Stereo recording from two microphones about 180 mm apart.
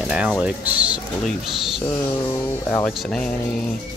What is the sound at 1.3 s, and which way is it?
Speech, 5° left (ahead or behind).